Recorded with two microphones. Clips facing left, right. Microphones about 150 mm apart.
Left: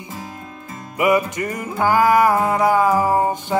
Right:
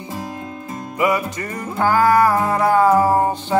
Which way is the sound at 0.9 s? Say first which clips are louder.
Left 2 dB; 20° left (ahead or behind).